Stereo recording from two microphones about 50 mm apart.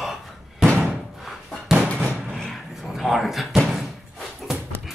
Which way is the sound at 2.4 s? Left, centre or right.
Centre.